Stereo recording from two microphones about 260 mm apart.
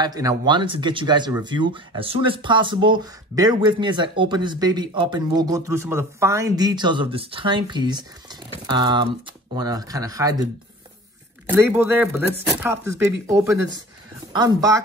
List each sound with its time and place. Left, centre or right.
0.0 s speech: centre